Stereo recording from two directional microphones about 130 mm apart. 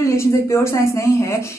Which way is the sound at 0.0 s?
20° left (ahead or behind).